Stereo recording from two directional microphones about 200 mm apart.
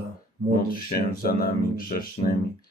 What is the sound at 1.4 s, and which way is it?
Speech, 45° left (ahead or behind).